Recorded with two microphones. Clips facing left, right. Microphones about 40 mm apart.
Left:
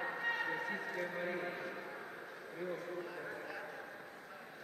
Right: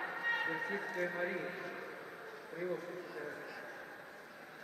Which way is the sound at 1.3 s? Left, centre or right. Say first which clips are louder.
Even; centre.